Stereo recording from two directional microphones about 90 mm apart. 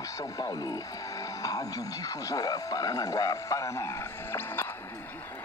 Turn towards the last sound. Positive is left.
turn(degrees=25)  # may be behind; listen again after turning